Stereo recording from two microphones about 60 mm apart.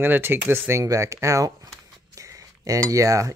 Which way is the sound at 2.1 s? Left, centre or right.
Right.